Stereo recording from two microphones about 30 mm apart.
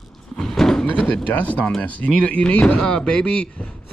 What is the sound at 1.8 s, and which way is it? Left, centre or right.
Speech, left.